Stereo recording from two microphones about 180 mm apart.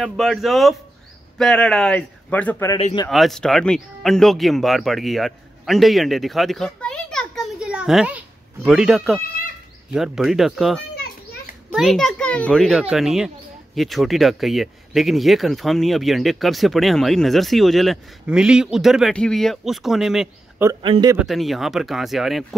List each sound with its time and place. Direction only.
0.0 s speech: centre (ahead or behind)
2.8 s speech: 35° left (ahead or behind)
3.1 s speech: centre (ahead or behind)
20.8 s speech: 30° right (ahead or behind)
21.3 s speech: centre (ahead or behind)